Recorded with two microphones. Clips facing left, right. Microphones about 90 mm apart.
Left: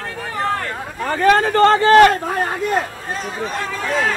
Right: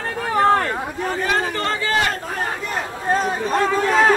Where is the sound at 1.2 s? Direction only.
55° left (ahead or behind).